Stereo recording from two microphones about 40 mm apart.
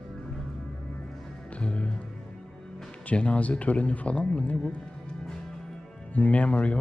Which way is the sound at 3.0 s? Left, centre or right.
Left.